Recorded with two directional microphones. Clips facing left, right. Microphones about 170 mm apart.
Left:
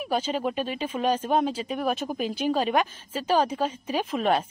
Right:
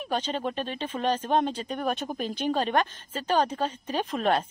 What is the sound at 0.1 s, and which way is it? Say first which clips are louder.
Speech: left 2 dB; 5° left (ahead or behind).